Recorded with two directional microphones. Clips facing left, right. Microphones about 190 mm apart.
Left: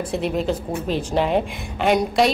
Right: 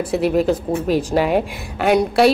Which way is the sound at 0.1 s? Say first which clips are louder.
Right 7 dB; 5° right (ahead or behind).